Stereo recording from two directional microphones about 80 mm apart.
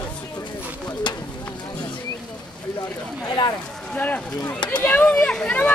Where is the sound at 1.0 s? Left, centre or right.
Left.